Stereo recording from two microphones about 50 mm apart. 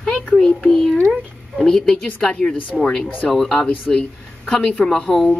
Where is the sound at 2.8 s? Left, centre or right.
Centre.